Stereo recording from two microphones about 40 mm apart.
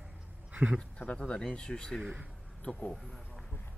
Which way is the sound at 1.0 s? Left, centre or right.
Left.